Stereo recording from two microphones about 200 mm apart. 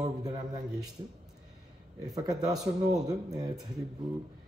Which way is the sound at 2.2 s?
20° right (ahead or behind).